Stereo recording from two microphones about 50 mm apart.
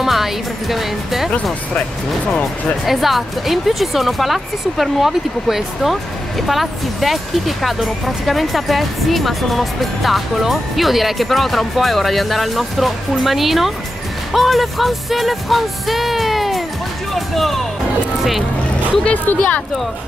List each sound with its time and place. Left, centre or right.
0.0 s speech: centre
1.8 s speech: left
2.8 s speech: centre
19.2 s speech: left